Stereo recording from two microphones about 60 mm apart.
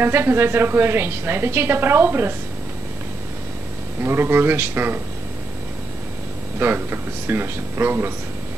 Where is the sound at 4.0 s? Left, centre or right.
Right.